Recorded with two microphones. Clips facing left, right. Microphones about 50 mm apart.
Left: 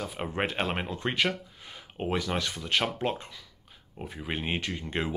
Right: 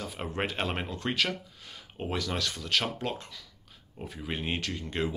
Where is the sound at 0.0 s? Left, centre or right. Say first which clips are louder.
Left 2 dB; centre.